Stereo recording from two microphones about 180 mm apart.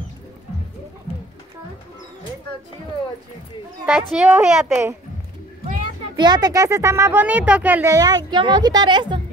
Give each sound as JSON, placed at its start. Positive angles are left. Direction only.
{"t": 3.8, "sound": "a woman's voice", "side_deg": -5}
{"t": 6.1, "sound": "speech", "side_deg": -25}